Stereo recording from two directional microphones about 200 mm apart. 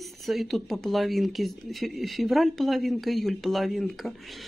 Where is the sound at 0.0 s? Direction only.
Centre (ahead or behind).